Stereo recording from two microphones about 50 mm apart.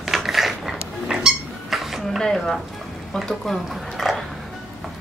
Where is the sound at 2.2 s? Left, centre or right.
Centre.